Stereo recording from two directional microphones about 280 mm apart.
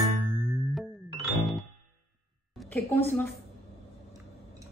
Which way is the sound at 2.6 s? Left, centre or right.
Centre.